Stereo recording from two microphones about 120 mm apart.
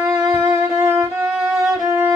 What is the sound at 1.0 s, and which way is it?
Violin, 20° right (ahead or behind).